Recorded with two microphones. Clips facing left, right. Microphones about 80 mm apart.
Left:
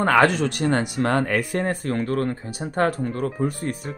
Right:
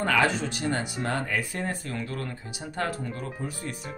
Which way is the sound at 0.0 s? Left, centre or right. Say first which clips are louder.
Left 7 dB; left.